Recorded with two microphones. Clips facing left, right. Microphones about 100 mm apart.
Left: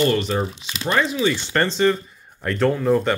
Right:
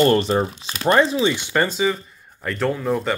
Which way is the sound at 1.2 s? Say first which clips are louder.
Even; 15° right (ahead or behind).